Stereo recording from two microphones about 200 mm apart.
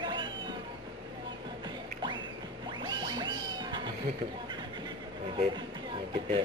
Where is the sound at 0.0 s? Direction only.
25° right (ahead or behind).